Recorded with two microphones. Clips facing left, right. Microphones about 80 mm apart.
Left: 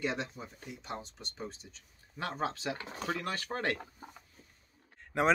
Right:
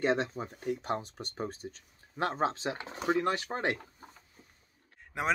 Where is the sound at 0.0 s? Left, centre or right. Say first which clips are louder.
Right 6 dB; right.